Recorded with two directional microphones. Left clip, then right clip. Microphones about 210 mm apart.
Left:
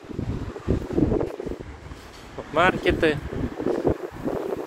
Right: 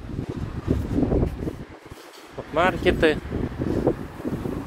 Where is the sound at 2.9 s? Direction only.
20° right (ahead or behind).